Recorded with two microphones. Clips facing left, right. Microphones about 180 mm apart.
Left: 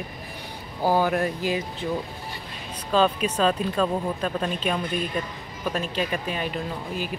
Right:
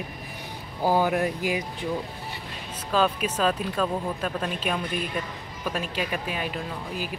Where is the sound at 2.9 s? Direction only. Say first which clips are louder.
Left 2 dB; 5° right (ahead or behind).